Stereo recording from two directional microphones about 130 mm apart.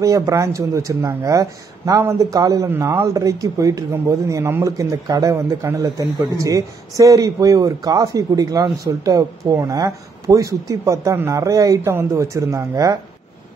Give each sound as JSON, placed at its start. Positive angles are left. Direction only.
{"t": 0.0, "sound": "speech", "side_deg": -25}